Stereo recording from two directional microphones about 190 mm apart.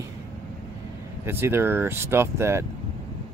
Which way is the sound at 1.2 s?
10° right (ahead or behind).